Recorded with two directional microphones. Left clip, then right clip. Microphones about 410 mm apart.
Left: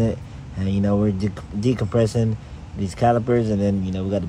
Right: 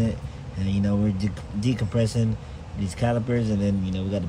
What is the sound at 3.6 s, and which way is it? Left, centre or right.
Speech, centre.